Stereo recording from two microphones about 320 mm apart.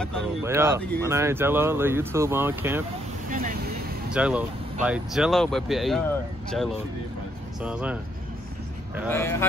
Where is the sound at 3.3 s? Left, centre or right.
Right.